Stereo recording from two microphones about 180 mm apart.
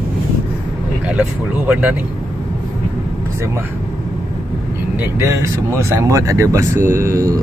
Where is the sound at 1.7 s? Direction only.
5° right (ahead or behind).